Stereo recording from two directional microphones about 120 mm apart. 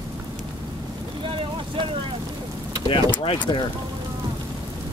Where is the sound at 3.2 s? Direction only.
45° left (ahead or behind).